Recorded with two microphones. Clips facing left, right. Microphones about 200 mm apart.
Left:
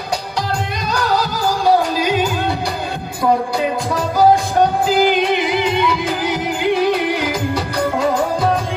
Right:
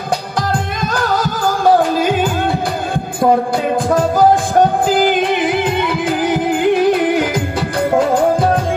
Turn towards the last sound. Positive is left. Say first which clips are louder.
# right 4 dB
turn(degrees=-50)  # may be behind; listen again after turning